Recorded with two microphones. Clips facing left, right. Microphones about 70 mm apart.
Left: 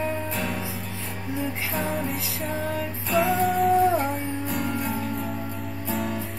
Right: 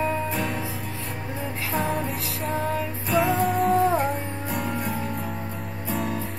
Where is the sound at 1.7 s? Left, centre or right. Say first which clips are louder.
Right 4 dB; centre.